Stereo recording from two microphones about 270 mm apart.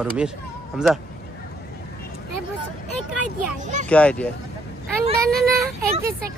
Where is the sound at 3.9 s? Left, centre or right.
Centre.